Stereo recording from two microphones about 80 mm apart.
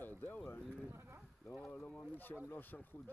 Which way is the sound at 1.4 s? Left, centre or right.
Centre.